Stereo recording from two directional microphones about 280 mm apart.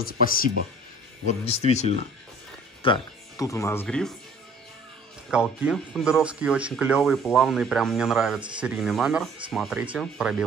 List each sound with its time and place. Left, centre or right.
0.0 s speech: left; by 4.1 s centre
5.3 s speech: centre